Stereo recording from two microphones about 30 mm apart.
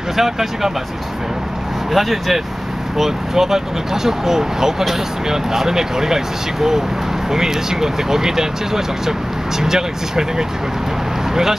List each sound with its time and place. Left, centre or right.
0.2 s speech: centre
1.9 s speech: centre
3.0 s speech: centre